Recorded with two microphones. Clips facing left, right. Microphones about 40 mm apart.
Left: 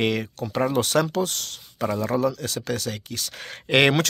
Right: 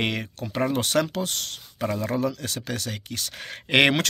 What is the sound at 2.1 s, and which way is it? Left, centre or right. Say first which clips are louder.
Speech: left 3 dB; right.